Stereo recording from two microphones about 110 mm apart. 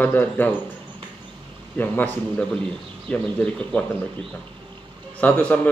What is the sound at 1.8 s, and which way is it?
A man's voice, 15° left (ahead or behind).